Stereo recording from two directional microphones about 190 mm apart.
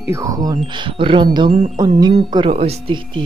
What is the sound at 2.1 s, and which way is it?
Speech, 30° right (ahead or behind).